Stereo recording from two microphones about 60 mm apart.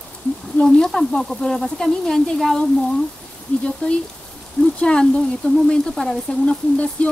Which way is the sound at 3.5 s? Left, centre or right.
Left.